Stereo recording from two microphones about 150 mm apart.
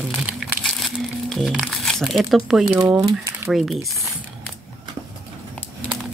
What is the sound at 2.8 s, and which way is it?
Speech, 20° right (ahead or behind).